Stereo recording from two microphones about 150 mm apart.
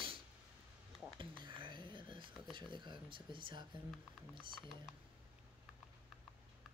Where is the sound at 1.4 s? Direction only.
30° right (ahead or behind).